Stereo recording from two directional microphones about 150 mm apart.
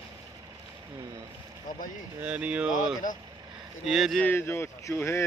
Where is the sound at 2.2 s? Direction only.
10° right (ahead or behind).